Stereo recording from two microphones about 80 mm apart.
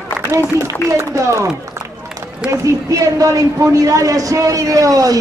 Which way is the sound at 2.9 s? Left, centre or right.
Right.